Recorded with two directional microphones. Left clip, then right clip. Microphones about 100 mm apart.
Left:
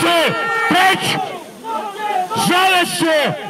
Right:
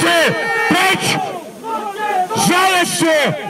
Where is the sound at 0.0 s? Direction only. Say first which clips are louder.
Right 1 dB; 20° right (ahead or behind).